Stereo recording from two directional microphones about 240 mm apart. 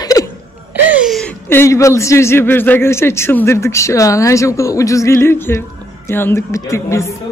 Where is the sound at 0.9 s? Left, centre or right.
Centre.